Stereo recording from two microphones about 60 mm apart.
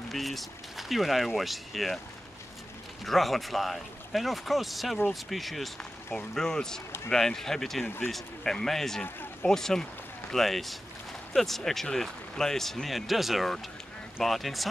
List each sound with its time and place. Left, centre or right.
0.1 s speech: centre
3.1 s speech: centre